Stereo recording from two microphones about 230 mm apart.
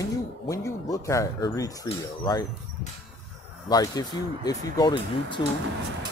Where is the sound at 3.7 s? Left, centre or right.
Centre.